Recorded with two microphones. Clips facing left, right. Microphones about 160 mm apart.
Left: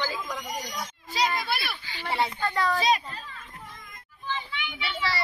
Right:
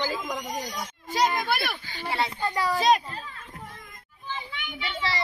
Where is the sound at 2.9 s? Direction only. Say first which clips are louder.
Right 3 dB; 50° right (ahead or behind).